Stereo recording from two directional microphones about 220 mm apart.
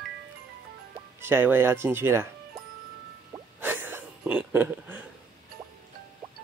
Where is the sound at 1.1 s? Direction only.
10° right (ahead or behind).